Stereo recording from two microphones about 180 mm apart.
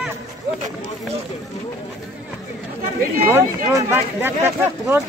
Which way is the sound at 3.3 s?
15° right (ahead or behind).